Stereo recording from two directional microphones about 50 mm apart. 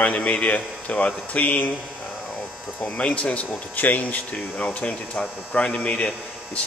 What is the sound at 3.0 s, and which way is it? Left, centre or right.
Speech, left.